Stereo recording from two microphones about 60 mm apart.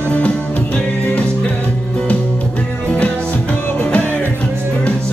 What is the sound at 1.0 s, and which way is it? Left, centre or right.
Music, left.